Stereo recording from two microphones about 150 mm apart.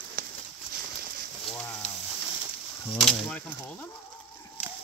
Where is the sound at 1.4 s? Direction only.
5° left (ahead or behind).